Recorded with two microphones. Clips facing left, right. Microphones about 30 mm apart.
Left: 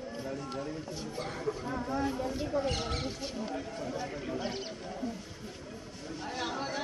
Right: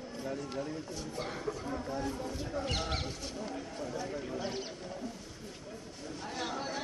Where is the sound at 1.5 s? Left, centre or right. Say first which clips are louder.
Left 3 dB; centre.